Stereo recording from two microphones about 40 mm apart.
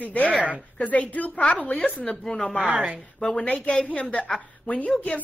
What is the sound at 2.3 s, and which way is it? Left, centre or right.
Speech, left.